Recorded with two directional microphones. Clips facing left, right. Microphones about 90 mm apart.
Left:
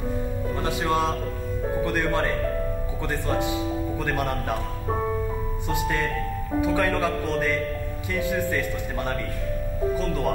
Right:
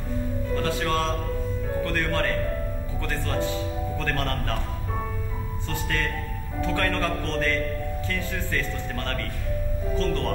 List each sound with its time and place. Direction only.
0.6 s speech: 15° left (ahead or behind)
5.7 s speech: 15° left (ahead or behind)